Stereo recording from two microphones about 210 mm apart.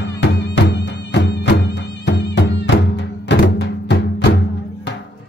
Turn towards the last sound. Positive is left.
turn(degrees=55)  # may be behind; listen again after turning